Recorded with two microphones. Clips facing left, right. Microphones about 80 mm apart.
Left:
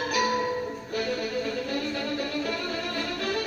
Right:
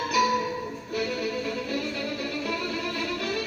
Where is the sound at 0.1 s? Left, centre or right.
Left.